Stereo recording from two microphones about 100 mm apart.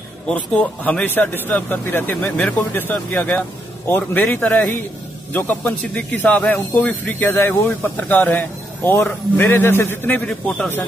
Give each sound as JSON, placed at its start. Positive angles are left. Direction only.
{"t": 0.3, "sound": "a man's voice", "side_deg": 10}